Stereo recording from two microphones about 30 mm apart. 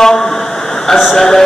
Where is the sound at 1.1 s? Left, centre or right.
Centre.